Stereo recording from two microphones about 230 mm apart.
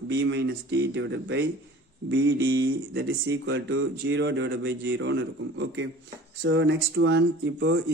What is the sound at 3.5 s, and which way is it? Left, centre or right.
Speech, right.